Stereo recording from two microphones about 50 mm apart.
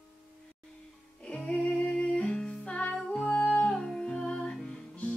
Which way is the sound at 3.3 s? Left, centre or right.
Left.